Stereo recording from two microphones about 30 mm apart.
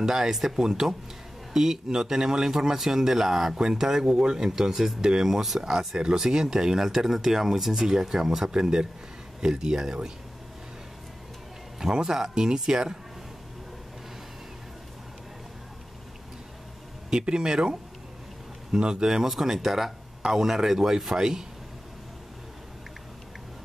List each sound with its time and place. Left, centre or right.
0.0 s a man's voice: centre
8.5 s speech: right
11.9 s speech: right
17.1 s speech: right
18.8 s speech: right
19.0 s speech: centre